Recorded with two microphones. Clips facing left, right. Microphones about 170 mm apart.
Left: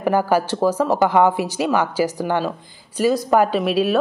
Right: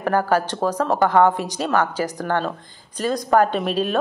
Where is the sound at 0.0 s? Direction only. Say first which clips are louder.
Left 2 dB; 10° left (ahead or behind).